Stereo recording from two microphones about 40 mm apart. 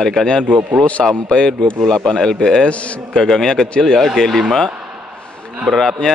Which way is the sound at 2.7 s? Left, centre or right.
Left.